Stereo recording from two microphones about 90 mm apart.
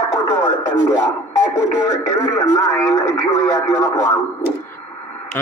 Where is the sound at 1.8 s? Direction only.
35° left (ahead or behind).